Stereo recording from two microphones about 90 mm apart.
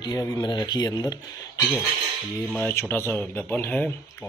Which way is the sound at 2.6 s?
25° left (ahead or behind).